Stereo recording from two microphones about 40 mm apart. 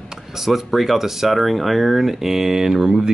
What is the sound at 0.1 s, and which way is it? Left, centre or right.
Speech, centre.